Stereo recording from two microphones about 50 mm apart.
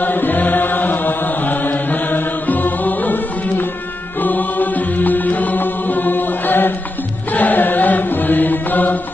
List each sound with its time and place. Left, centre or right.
0.0 s chant: left
4.2 s music: left
7.3 s chant: left